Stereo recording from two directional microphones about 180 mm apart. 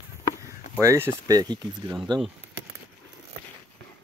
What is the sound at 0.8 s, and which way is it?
Speech, 15° right (ahead or behind).